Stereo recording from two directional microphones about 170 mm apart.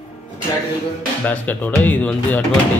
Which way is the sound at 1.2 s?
10° left (ahead or behind).